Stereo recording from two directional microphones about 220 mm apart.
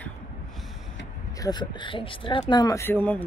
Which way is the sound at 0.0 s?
Centre (ahead or behind).